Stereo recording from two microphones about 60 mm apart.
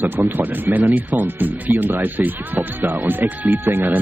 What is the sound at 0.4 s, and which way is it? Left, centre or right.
Speech, right.